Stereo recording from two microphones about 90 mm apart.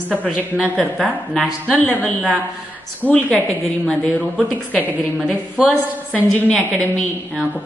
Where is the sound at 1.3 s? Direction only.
10° left (ahead or behind).